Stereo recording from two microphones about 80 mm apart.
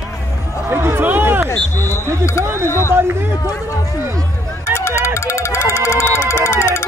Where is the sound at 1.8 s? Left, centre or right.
Left.